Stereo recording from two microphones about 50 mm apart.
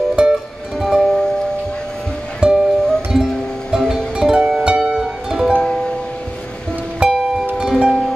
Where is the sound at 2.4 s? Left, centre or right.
Right.